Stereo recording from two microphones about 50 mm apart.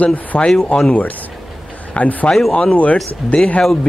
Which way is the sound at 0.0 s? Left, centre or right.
Left.